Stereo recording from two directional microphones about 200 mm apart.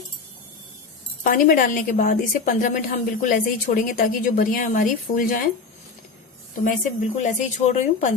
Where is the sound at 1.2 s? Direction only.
45° left (ahead or behind).